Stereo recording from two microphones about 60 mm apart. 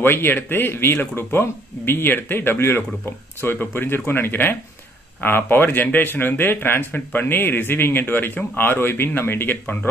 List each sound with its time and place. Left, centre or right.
0.0 s speech: left